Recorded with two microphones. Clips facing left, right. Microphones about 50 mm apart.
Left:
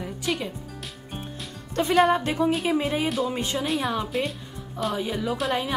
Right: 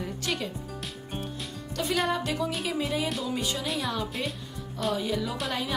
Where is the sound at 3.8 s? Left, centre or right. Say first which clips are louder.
Left 4 dB; left.